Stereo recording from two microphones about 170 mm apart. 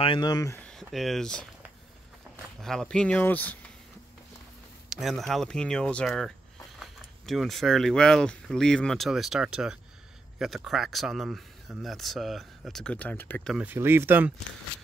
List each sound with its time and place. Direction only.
0.0 s speech: 25° left (ahead or behind)
0.7 s speech: centre (ahead or behind)
2.6 s speech: 5° left (ahead or behind)
4.8 s speech: centre (ahead or behind)
13.5 s speech: 10° right (ahead or behind)